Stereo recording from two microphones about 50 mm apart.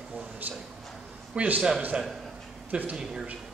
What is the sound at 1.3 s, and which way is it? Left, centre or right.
Speech, right.